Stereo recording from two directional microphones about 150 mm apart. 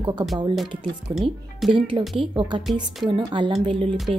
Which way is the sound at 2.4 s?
35° right (ahead or behind).